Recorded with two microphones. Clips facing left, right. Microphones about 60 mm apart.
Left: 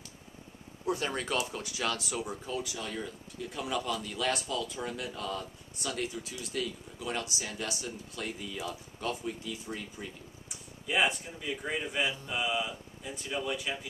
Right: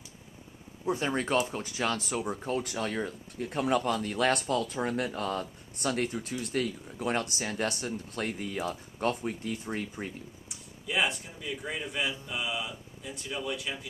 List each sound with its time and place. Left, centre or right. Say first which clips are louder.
0.8 s speech: right 3 dB; right
10.9 s speech: left 1 dB; centre